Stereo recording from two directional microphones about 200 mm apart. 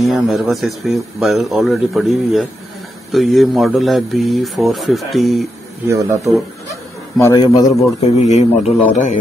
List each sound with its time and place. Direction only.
0.0 s speech: centre (ahead or behind)
5.9 s speech: 15° right (ahead or behind)
6.7 s speech: 15° left (ahead or behind)
8.0 s a man's voice: 35° left (ahead or behind)